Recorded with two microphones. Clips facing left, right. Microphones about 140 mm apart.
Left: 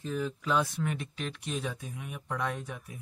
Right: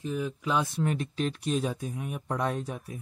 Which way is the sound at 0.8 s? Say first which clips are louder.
Right 6 dB; 35° right (ahead or behind).